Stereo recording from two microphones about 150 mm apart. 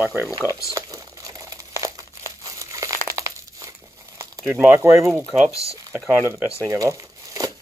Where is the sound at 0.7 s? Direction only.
20° right (ahead or behind).